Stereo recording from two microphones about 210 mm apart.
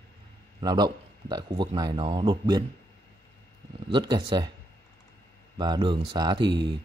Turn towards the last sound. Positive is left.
turn(degrees=-20)  # may be behind; listen again after turning